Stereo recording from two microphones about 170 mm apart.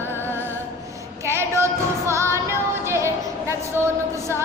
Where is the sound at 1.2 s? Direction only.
15° right (ahead or behind).